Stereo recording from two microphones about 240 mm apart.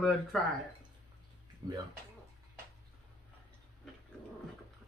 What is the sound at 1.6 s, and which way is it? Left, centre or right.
Speech, centre.